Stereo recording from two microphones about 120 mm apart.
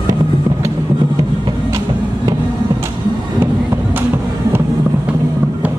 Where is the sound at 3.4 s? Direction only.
20° right (ahead or behind).